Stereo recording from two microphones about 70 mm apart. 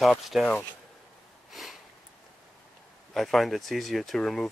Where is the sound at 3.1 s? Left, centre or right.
Centre.